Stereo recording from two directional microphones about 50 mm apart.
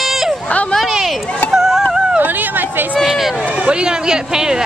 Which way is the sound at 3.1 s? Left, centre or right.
Centre.